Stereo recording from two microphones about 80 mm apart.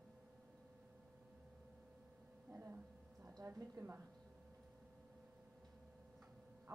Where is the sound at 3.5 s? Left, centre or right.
Right.